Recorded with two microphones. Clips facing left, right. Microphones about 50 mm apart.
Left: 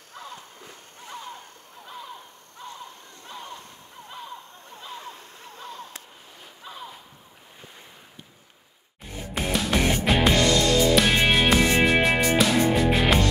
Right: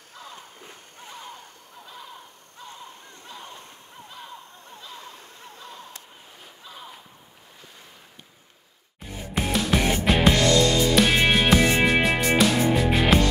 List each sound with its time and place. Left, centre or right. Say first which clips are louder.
9.0 s music: right 1 dB; centre